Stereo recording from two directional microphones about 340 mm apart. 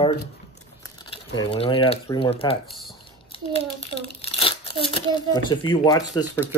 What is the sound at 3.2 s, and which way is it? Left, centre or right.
A child's voice, centre.